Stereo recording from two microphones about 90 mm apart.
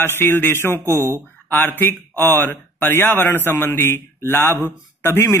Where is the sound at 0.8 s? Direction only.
30° right (ahead or behind).